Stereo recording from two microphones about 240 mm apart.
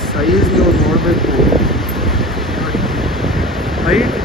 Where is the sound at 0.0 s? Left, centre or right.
Centre.